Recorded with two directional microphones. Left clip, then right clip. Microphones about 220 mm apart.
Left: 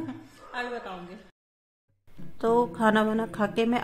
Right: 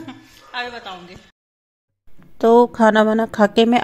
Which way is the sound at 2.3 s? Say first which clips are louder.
Right 11 dB; 30° right (ahead or behind).